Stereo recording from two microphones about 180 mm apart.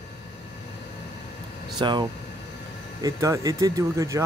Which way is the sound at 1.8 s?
25° right (ahead or behind).